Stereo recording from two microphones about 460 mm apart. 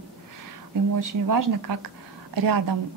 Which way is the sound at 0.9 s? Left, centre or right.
Right.